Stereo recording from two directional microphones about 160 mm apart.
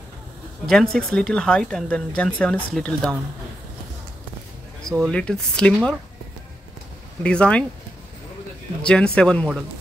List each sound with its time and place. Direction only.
0.7 s speech: 5° left (ahead or behind)
4.8 s speech: centre (ahead or behind)
7.2 s speech: 5° left (ahead or behind)
8.8 s speech: 5° left (ahead or behind)